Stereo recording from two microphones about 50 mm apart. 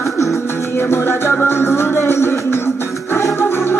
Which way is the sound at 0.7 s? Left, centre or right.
Left.